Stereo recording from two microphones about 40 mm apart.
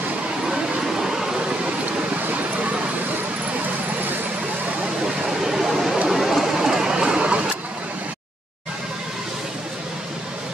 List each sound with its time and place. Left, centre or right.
0.5 s vehicle: centre
1.9 s vehicle: right
5.0 s a sound: centre